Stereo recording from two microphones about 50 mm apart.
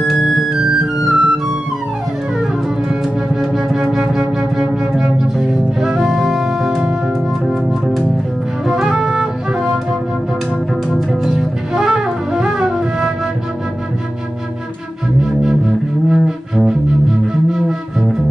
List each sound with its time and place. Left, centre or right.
0.0 s music: centre
0.6 s music: centre
3.3 s wind instrument: centre
8.6 s music: centre
11.0 s music: centre
15.2 s music: centre